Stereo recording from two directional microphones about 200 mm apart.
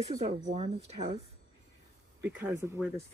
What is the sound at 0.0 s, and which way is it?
Speech, 35° right (ahead or behind).